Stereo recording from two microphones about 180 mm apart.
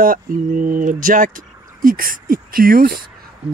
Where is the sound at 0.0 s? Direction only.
50° right (ahead or behind).